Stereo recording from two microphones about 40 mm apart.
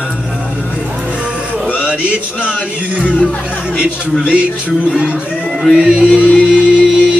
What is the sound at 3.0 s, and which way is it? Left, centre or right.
Speech, left.